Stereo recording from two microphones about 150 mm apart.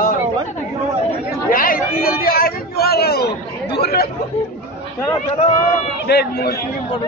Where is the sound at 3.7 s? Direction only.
90° left.